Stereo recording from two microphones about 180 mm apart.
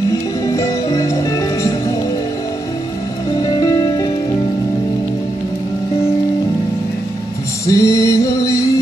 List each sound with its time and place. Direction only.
0.1 s music: 20° left (ahead or behind)
3.5 s music: 25° left (ahead or behind)
7.6 s music: 15° left (ahead or behind)